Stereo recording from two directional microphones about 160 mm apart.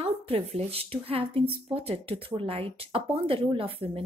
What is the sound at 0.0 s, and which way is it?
Speech, 40° right (ahead or behind).